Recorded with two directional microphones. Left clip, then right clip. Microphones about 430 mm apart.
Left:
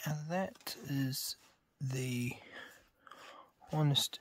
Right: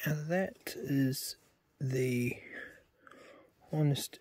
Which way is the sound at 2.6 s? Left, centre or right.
Left.